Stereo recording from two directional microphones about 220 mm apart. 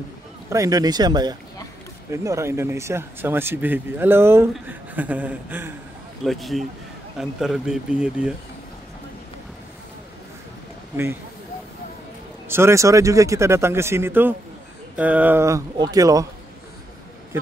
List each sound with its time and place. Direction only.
0.5 s a man's voice: 15° right (ahead or behind)
12.4 s speech: 10° right (ahead or behind)